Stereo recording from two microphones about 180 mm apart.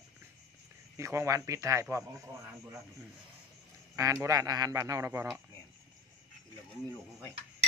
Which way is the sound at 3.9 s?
15° right (ahead or behind).